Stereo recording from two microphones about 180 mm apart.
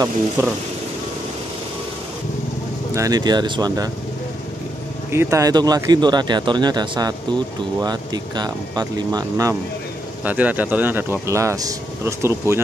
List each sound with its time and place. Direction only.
0.4 s speech: 15° right (ahead or behind)
2.9 s speech: 20° right (ahead or behind)
5.1 s speech: 15° right (ahead or behind)
10.2 s speech: 10° right (ahead or behind)